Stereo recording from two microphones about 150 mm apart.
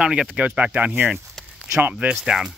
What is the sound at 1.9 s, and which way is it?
Speech, 5° right (ahead or behind).